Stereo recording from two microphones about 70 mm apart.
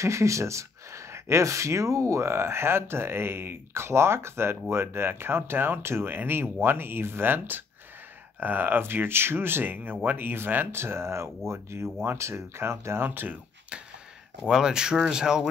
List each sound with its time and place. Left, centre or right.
0.0 s speech: right
14.5 s speech: centre